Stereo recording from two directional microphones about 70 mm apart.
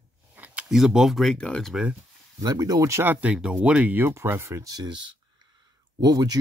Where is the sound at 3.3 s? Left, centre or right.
Centre.